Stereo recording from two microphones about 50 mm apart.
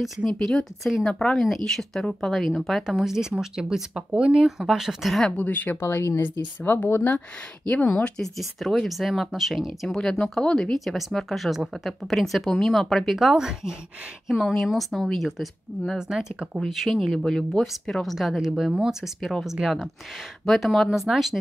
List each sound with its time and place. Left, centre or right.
0.2 s speech: centre
2.3 s speech: centre
3.1 s speech: centre
4.5 s speech: centre
5.3 s a woman's voice: left
5.8 s speech: left
7.7 s speech: left
8.4 s speech: centre
14.2 s speech: centre